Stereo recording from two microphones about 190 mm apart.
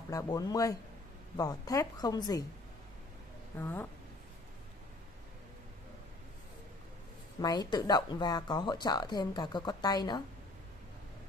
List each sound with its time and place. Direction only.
0.1 s speech: 20° left (ahead or behind)
3.5 s speech: 10° left (ahead or behind)
7.3 s speech: 20° left (ahead or behind)